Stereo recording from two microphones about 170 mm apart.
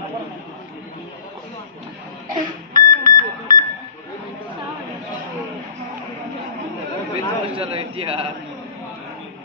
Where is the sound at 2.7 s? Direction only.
55° right (ahead or behind).